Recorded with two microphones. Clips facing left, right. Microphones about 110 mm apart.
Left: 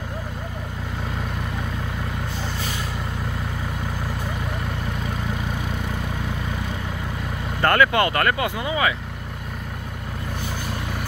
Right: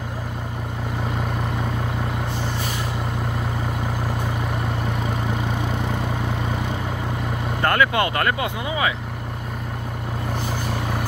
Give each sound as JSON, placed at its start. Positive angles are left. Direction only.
{"t": 7.6, "sound": "speech", "side_deg": -10}